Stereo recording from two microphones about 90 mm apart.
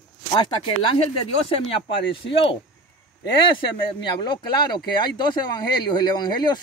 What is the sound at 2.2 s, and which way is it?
Speech, 70° left (ahead or behind).